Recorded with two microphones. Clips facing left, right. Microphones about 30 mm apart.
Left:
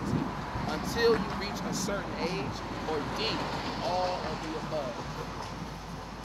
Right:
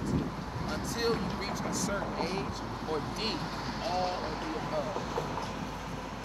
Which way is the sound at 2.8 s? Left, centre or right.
Left.